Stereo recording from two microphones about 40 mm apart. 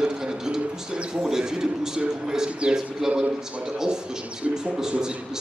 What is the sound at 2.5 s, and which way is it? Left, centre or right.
Speech, right.